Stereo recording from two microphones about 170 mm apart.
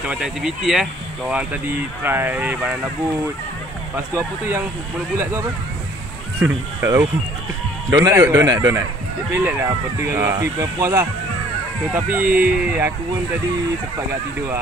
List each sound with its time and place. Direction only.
0.1 s speech: 5° right (ahead or behind)
2.0 s speech: 10° right (ahead or behind)
3.9 s speech: 15° right (ahead or behind)